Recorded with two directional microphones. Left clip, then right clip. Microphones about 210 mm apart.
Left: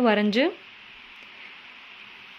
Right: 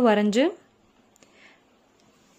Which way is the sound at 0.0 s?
20° right (ahead or behind).